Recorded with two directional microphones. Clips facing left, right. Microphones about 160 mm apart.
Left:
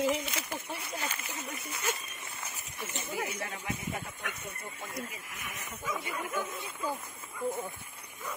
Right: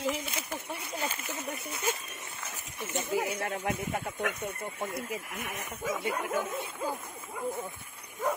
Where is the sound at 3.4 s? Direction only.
55° right (ahead or behind).